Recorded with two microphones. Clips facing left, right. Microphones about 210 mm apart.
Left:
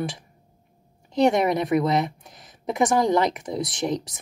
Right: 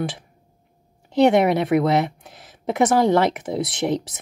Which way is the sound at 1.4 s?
70° right (ahead or behind).